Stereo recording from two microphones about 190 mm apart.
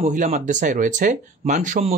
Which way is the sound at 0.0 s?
40° right (ahead or behind).